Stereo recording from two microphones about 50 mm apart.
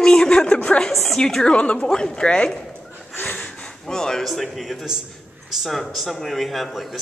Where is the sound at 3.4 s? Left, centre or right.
Centre.